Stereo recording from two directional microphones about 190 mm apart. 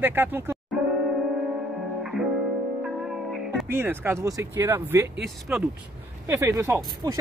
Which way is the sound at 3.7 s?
10° right (ahead or behind).